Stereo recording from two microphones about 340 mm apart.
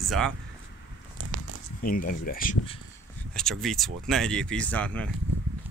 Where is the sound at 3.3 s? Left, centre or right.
Centre.